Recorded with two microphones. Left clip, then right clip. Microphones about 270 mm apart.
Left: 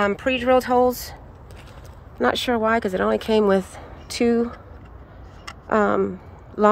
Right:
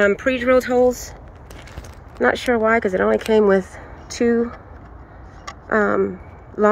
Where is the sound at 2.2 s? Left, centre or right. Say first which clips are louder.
Right 3 dB; centre.